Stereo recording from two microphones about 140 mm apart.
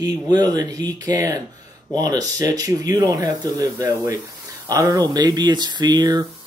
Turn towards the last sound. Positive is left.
turn(degrees=-30)  # may be behind; listen again after turning